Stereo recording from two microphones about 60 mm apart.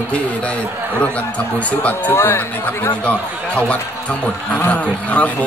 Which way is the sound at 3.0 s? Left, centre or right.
Left.